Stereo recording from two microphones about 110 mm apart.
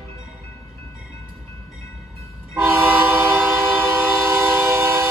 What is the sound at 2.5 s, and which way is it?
Train, 25° right (ahead or behind).